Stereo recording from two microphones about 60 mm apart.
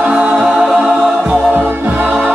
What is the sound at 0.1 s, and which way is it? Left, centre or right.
Music, centre.